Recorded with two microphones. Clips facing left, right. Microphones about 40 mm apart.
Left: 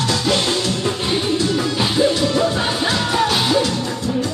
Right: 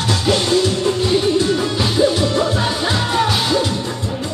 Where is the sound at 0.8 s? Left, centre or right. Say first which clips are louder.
Right 4 dB; centre.